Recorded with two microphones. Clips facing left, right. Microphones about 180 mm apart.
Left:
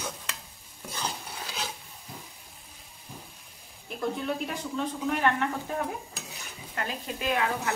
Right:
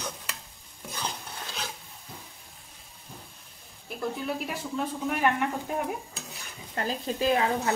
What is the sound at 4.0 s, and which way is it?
Speech, 5° right (ahead or behind).